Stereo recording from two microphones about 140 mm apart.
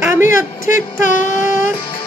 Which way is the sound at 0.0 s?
20° right (ahead or behind).